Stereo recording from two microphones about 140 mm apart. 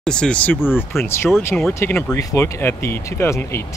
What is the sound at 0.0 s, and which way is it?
Speech, 5° left (ahead or behind).